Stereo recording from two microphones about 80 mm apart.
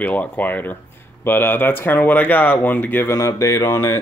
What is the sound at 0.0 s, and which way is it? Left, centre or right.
Speech, centre.